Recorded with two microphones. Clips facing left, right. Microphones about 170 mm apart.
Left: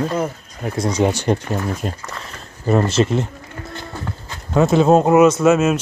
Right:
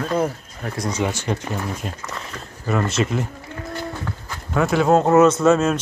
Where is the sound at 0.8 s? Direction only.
35° left (ahead or behind).